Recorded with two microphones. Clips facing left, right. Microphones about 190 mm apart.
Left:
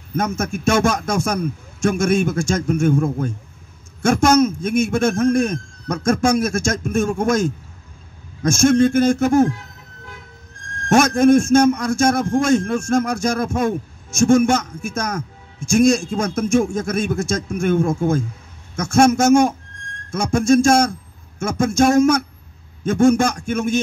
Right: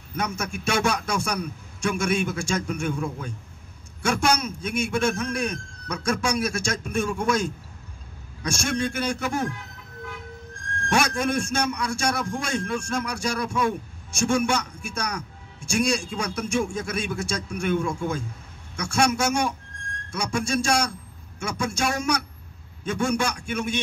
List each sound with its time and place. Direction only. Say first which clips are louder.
0.1 s a man's voice: left 7 dB; 45° left (ahead or behind)
10.9 s a man's voice: left 11 dB; 45° left (ahead or behind)